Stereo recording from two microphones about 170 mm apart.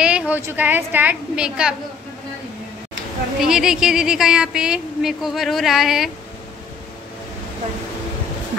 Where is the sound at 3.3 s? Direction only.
5° right (ahead or behind).